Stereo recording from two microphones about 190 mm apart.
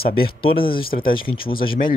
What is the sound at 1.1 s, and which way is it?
Speech, 25° left (ahead or behind).